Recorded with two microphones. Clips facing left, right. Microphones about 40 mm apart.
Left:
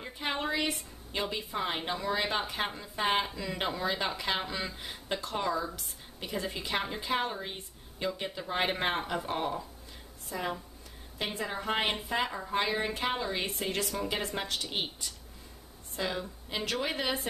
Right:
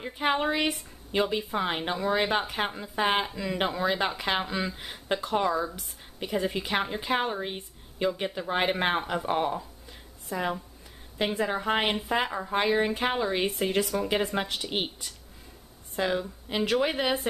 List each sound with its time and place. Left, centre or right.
0.0 s a woman's voice: centre